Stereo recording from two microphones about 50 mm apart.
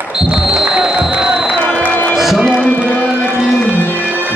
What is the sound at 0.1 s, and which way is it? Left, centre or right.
Music, centre.